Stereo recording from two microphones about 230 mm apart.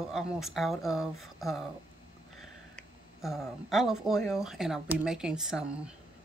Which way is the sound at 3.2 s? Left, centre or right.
Centre.